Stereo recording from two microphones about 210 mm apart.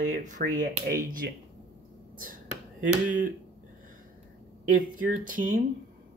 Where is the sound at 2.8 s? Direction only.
40° right (ahead or behind).